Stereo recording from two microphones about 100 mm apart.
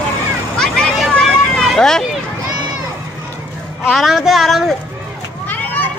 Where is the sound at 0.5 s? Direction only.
5° left (ahead or behind).